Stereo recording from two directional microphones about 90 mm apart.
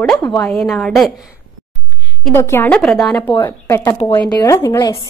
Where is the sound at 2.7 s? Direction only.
5° left (ahead or behind).